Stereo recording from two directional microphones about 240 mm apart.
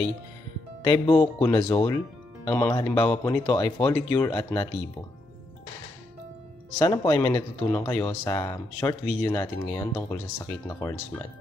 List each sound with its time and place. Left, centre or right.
0.8 s speech: centre
6.8 s speech: centre